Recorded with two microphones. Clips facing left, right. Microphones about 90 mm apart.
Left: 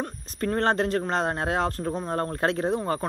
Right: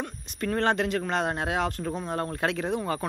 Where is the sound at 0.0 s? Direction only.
35° left (ahead or behind).